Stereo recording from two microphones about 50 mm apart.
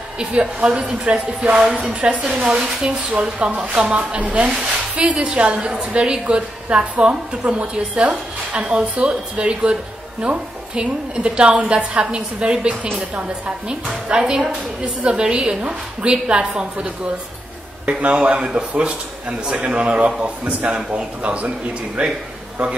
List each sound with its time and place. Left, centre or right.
0.2 s a woman's voice: centre
17.8 s a woman's voice: right